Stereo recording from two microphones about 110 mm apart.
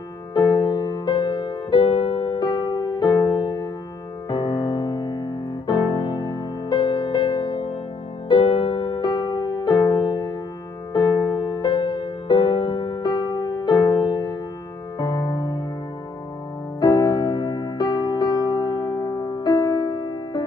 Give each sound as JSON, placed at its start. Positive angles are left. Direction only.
{"t": 0.3, "sound": "music", "side_deg": 30}
{"t": 16.8, "sound": "music", "side_deg": 40}